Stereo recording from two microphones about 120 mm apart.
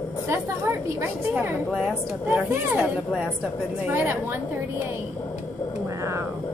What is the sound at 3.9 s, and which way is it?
Speech, 20° right (ahead or behind).